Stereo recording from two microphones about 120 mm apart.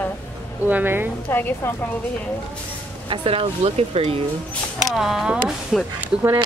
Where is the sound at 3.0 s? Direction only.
50° right (ahead or behind).